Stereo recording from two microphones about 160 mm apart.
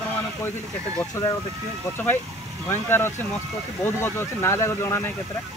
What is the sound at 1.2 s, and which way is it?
Speech, 15° left (ahead or behind).